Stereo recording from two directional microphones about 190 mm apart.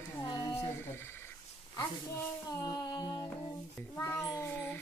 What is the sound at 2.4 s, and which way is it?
Music, 20° left (ahead or behind).